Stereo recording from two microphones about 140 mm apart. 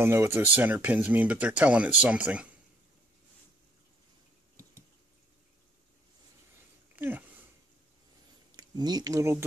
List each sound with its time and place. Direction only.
0.0 s speech: 15° right (ahead or behind)
7.0 s a sound: 15° right (ahead or behind)
8.5 s speech: 30° right (ahead or behind)